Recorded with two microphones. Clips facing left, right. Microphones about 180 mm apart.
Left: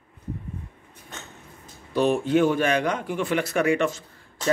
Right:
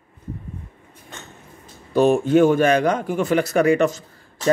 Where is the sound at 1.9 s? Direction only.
45° right (ahead or behind).